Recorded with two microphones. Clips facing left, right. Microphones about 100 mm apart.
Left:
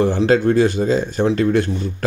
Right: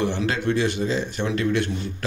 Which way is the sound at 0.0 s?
40° left (ahead or behind).